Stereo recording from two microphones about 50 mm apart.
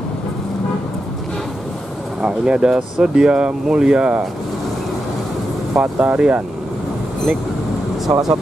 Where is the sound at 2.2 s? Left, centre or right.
Centre.